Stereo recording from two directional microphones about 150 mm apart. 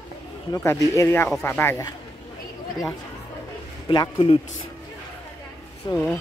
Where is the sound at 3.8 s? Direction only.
30° left (ahead or behind).